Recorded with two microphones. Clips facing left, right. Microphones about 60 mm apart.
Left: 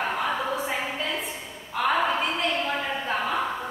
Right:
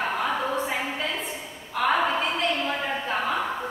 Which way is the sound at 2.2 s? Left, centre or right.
Centre.